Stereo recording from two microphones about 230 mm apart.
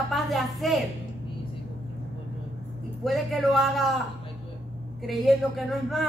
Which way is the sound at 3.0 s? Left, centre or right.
Centre.